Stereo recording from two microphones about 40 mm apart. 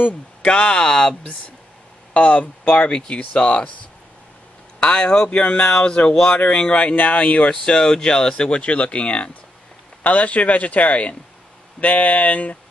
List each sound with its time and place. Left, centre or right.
0.4 s speech: left
2.1 s a man's voice: left
4.9 s speech: centre
5.3 s a man's voice: left
7.6 s a man's voice: centre; by 12.5 s left